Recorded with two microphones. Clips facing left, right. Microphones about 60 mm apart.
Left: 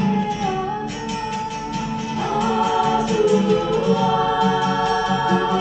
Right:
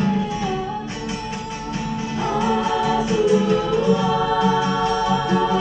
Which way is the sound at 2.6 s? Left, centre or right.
Centre.